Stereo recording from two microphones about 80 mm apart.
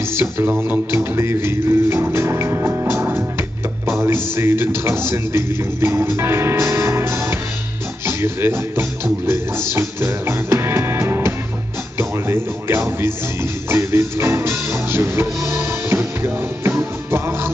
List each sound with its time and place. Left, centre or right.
0.0 s music: right
4.4 s speech: right